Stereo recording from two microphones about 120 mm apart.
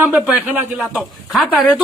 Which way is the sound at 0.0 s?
15° right (ahead or behind).